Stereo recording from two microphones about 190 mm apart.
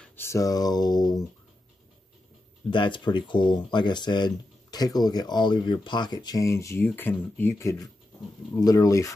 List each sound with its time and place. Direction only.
0.0 s speech: 10° left (ahead or behind)
2.7 s speech: 25° left (ahead or behind)